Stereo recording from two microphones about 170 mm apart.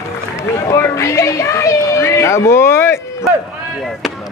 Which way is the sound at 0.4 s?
15° left (ahead or behind).